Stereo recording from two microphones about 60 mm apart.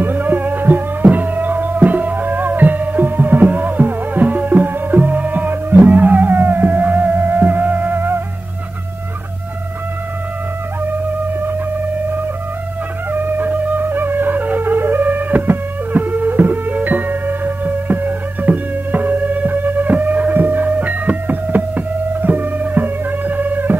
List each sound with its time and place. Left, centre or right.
0.0 s music: right
10.9 s music: right